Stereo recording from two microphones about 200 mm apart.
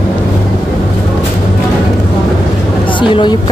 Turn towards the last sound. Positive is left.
turn(degrees=25)  # may be behind; listen again after turning